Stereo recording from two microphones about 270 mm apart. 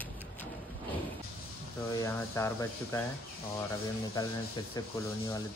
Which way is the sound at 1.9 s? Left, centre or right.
Centre.